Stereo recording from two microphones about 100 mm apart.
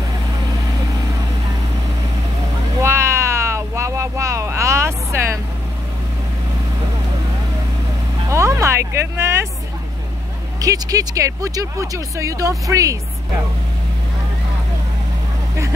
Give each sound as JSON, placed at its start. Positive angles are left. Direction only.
{"t": 2.8, "sound": "a sound", "side_deg": -25}
{"t": 8.3, "sound": "music", "side_deg": -30}
{"t": 10.6, "sound": "speech", "side_deg": -35}